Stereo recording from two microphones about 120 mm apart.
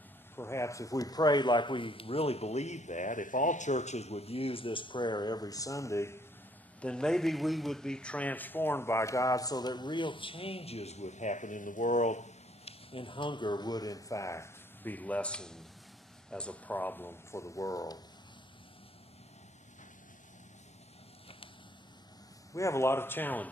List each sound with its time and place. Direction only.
0.4 s speech: 25° left (ahead or behind)
6.8 s speech: 5° left (ahead or behind); by 12.7 s 75° left (ahead or behind)
12.9 s speech: 45° left (ahead or behind); by 18.0 s 30° left (ahead or behind)
22.5 s speech: 25° left (ahead or behind)